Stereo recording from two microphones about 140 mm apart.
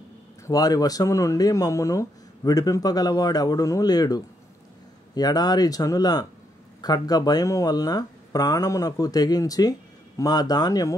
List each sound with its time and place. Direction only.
0.5 s speech: 25° left (ahead or behind)